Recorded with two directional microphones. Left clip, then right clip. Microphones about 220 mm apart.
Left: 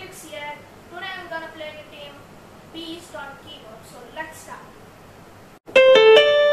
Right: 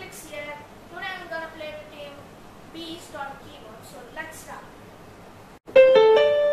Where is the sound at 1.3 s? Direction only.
10° right (ahead or behind).